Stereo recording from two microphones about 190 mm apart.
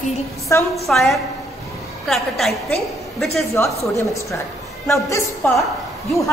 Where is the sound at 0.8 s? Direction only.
Centre (ahead or behind).